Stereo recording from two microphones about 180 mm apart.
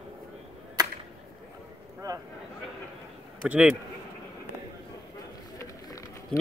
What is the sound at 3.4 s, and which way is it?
Speech, 5° right (ahead or behind).